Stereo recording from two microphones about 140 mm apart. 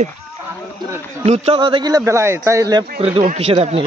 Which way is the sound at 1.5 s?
35° right (ahead or behind).